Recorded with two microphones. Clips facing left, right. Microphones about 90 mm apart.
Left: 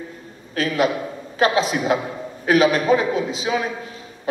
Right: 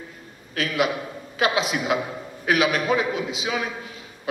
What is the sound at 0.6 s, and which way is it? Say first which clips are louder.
A woman's voice: left 4 dB; 35° left (ahead or behind).